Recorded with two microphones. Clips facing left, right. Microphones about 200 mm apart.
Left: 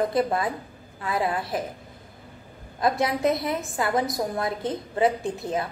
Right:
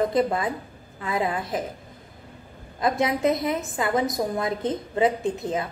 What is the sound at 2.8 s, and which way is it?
A woman's voice, 20° right (ahead or behind).